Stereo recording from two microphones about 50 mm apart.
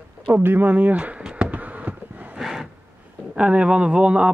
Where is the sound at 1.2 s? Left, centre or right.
Centre.